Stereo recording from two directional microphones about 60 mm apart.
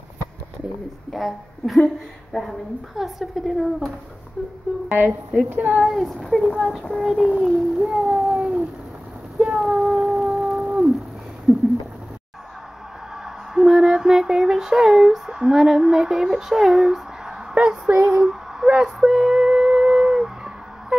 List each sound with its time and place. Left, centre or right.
1.1 s a woman's voice: centre
4.4 s a sound: centre
4.8 s a woman's voice: right
5.9 s a woman's voice: centre
8.2 s cat: centre
9.8 s a sound: centre
11.5 s a sound: right
13.2 s female singing: centre
17.6 s a child's voice: centre
18.2 s music: centre